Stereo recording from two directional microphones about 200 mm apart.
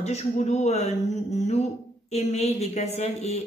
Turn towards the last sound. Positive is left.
turn(degrees=35)  # may be behind; listen again after turning